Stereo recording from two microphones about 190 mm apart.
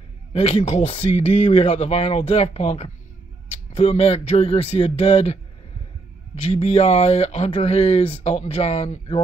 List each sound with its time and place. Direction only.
0.3 s speech: 35° left (ahead or behind)
6.4 s speech: 35° left (ahead or behind)